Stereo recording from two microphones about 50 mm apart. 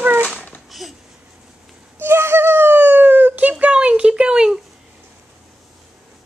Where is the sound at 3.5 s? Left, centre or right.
Right.